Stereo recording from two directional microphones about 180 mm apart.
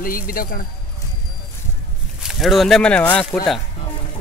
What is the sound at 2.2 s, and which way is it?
Speech, centre (ahead or behind).